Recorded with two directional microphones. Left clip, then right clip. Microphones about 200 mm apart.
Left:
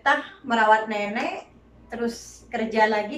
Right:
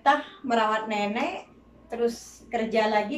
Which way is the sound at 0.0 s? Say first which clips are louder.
Even; 15° right (ahead or behind).